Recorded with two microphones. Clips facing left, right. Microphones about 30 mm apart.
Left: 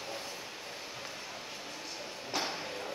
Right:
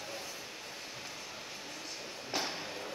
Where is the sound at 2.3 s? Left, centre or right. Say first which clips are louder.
Left 1 dB; centre.